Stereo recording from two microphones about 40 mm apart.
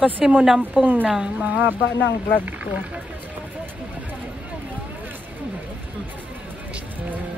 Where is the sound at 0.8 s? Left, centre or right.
Right.